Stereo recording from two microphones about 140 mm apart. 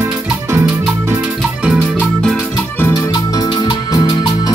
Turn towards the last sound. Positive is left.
turn(degrees=30)  # may be behind; listen again after turning